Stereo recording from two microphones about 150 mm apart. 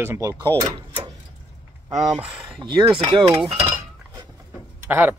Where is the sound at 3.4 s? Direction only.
40° right (ahead or behind).